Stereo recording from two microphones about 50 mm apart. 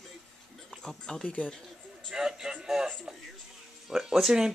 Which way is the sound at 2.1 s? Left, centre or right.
Centre.